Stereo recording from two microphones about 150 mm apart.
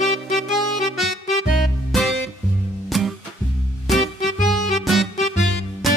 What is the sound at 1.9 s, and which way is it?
Music, centre (ahead or behind).